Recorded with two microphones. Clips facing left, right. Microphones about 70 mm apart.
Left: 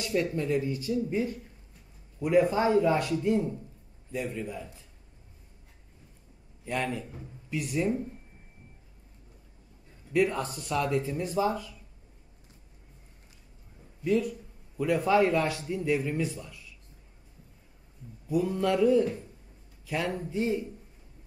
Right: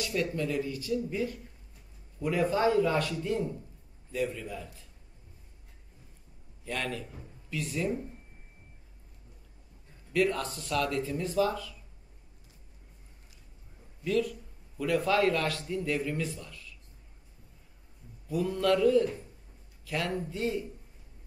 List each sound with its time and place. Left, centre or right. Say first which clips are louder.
0.0 s speech: left 2 dB; left
6.6 s a man's voice: left 3 dB; centre
10.1 s speech: left 2 dB; centre
14.0 s a man's voice: left 2 dB; centre
18.3 s a man's voice: even; centre